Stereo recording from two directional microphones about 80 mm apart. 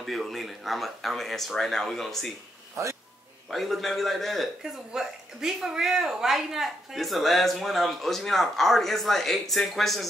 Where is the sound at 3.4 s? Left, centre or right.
Centre.